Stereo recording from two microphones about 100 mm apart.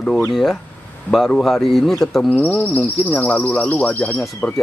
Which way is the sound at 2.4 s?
15° left (ahead or behind).